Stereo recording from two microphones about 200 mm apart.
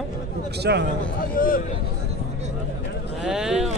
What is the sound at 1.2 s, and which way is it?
Speech, 45° left (ahead or behind).